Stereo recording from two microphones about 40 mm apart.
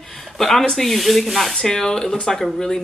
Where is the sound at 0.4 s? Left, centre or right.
Centre.